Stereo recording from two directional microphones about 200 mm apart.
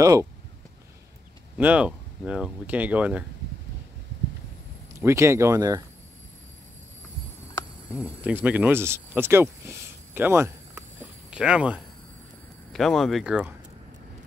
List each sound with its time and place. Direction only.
0.0 s speech: 15° right (ahead or behind)
1.6 s speech: 5° right (ahead or behind)
5.0 s speech: 15° right (ahead or behind)
7.9 s speech: 10° right (ahead or behind)